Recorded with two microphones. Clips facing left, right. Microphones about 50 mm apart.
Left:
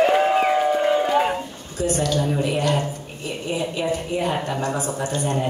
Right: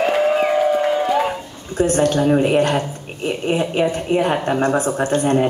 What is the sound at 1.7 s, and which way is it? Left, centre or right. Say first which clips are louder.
A woman's voice: right 6 dB; right.